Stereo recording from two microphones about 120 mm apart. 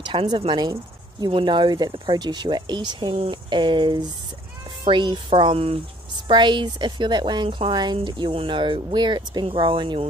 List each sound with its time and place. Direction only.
0.0 s a woman's voice: 40° right (ahead or behind)